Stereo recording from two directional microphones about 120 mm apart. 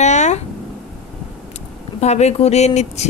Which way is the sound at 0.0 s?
75° left (ahead or behind).